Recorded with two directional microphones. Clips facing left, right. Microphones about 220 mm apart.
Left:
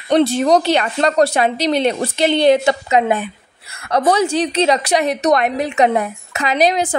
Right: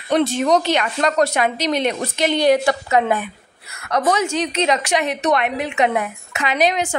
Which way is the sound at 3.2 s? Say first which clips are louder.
Left 4 dB; 30° left (ahead or behind).